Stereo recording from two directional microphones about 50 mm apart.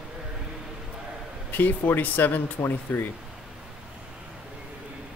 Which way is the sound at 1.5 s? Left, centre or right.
Left.